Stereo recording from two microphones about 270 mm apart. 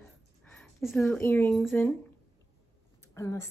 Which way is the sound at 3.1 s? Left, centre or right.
Centre.